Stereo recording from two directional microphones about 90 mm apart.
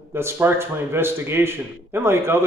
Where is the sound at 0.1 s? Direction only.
25° right (ahead or behind).